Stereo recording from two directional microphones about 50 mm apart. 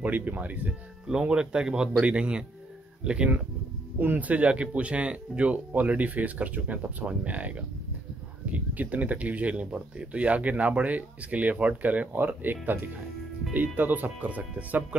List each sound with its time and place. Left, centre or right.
0.0 s speech: right
1.0 s speech: centre
4.2 s speech: right
12.1 s speech: right